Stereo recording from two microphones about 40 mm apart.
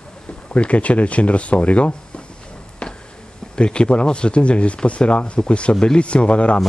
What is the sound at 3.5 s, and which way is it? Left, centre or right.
Speech, left.